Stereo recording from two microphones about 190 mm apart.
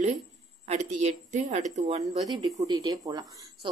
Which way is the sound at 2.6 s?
20° right (ahead or behind).